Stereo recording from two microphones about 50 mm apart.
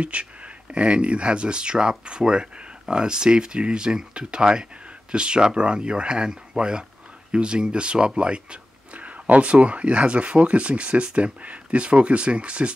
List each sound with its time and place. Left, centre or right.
0.0 s speech: right